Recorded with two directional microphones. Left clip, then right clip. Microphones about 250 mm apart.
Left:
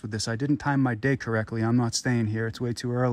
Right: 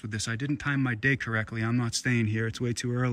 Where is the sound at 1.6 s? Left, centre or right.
Right.